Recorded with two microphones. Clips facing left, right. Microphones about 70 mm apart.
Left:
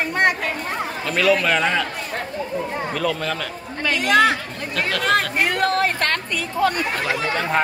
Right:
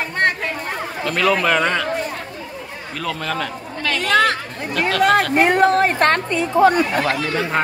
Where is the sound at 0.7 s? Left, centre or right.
Centre.